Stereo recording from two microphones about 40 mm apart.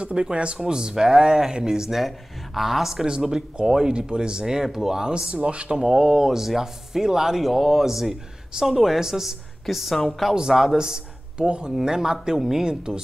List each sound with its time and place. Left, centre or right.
0.0 s speech: right; by 5.1 s centre
5.1 s speech: right
5.8 s speech: centre
9.9 s speech: centre
10.3 s speech: centre